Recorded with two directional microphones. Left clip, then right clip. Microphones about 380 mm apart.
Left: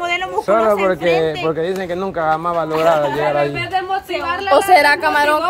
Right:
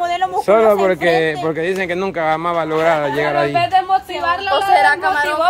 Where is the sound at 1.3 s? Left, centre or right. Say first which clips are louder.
Even; centre.